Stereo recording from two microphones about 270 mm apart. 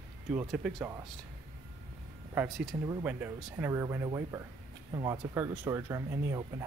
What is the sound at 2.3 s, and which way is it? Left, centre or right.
Speech, centre.